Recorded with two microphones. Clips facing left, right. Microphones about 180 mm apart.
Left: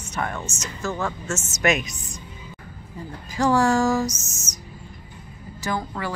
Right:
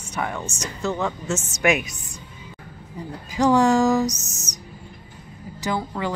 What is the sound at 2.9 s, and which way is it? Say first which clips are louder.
Speech: right 3 dB; 15° right (ahead or behind).